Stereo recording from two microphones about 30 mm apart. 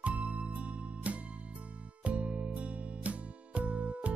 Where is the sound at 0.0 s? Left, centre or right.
Right.